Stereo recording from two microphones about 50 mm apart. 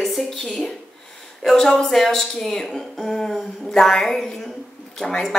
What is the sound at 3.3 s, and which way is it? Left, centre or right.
Speech, centre.